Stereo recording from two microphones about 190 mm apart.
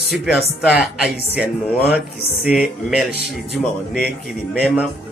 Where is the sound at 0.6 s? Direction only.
Centre (ahead or behind).